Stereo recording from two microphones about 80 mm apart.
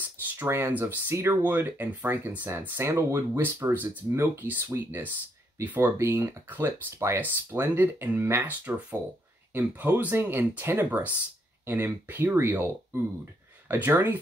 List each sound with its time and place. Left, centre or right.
0.5 s speech: right